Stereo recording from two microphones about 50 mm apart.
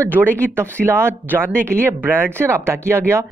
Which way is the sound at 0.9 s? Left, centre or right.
Right.